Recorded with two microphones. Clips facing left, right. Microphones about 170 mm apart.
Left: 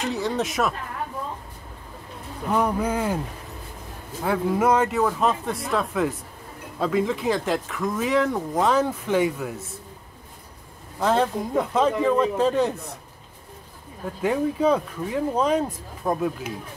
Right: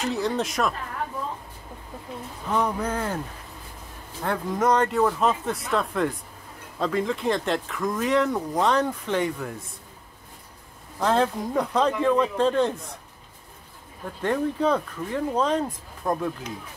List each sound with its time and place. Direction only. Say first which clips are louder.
0.0 s speech: even; centre (ahead or behind)
2.5 s speech: left 2 dB; 10° left (ahead or behind)
4.2 s speech: left 3 dB; 5° left (ahead or behind)
11.0 s speech: left 1 dB; centre (ahead or behind)
14.2 s speech: left 2 dB; 5° left (ahead or behind)